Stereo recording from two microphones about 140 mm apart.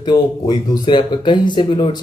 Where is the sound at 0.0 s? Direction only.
30° left (ahead or behind).